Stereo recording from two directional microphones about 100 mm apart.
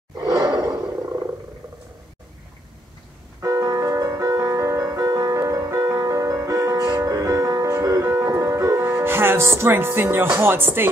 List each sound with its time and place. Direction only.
0.2 s roar: 35° right (ahead or behind)
3.3 s music: 35° right (ahead or behind)
8.9 s music: 20° right (ahead or behind)